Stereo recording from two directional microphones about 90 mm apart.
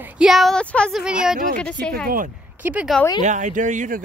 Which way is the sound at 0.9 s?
10° right (ahead or behind).